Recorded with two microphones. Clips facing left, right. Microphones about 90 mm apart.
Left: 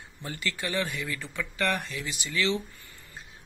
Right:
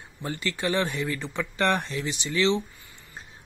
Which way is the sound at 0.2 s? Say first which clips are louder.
Right 5 dB; 25° right (ahead or behind).